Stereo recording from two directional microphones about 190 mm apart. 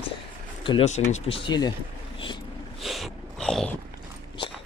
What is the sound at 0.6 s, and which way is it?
Speech, 30° left (ahead or behind).